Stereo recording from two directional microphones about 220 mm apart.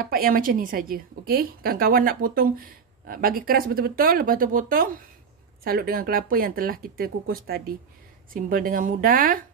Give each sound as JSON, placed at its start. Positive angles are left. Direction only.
{"t": 0.0, "sound": "a woman's voice", "side_deg": -40}